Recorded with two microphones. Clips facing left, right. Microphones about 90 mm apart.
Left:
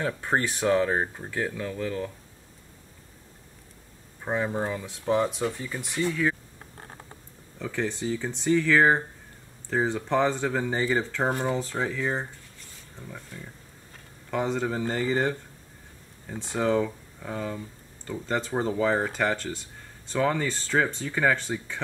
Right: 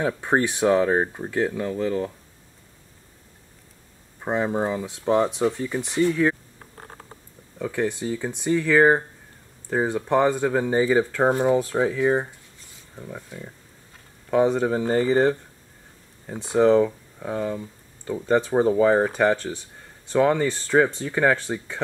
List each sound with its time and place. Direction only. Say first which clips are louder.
0.0 s speech: right 5 dB; 20° right (ahead or behind)
4.2 s speech: right 4 dB; 20° right (ahead or behind)
7.5 s speech: right 5 dB; 10° right (ahead or behind)